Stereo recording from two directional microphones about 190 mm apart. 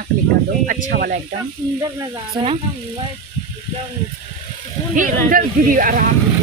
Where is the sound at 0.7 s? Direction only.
50° right (ahead or behind).